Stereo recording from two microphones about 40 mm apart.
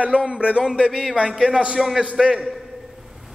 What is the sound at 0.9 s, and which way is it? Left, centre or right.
A man's voice, centre.